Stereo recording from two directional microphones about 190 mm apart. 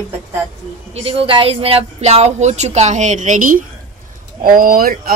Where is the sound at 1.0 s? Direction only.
30° right (ahead or behind).